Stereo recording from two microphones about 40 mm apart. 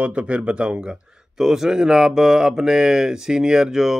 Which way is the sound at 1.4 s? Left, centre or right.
Centre.